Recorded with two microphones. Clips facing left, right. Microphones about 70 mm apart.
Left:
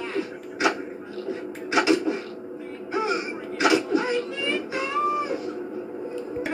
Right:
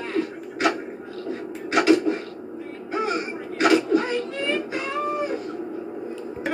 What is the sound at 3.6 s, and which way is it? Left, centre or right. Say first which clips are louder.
Cat: right 2 dB; right.